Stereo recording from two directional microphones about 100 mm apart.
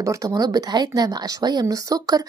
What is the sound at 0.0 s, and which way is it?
Speech, 35° right (ahead or behind).